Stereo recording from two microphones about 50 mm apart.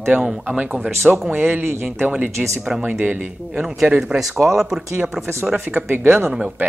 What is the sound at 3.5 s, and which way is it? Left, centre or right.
Speech, centre.